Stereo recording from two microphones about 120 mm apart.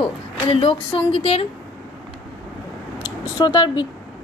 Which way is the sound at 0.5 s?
50° left (ahead or behind).